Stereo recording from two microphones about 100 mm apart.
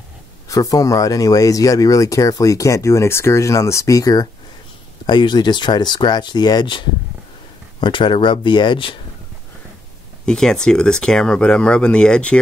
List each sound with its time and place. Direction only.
0.5 s speech: 35° left (ahead or behind)
5.0 s speech: 50° left (ahead or behind)
7.8 s speech: 55° left (ahead or behind)
10.2 s speech: 5° left (ahead or behind)